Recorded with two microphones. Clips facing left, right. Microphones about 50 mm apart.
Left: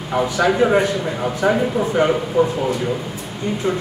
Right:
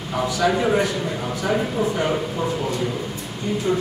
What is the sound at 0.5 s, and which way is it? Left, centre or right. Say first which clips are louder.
Speech: left 4 dB; left.